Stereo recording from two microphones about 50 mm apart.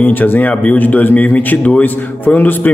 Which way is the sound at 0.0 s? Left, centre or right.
Left.